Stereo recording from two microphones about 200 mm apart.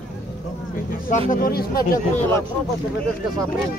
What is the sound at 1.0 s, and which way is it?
Speech, 45° left (ahead or behind).